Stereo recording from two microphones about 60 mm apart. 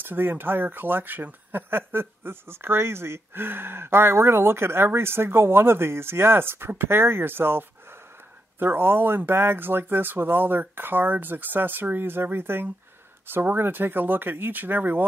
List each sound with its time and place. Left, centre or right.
0.0 s speech: right